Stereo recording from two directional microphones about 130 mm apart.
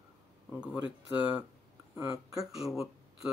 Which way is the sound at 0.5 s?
10° right (ahead or behind).